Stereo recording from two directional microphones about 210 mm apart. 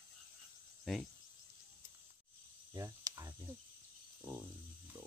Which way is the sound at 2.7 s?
15° right (ahead or behind).